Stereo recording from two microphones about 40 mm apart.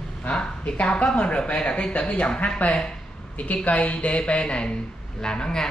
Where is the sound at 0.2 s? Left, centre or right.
Left.